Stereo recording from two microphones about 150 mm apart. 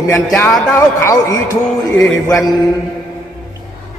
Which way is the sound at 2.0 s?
5° left (ahead or behind).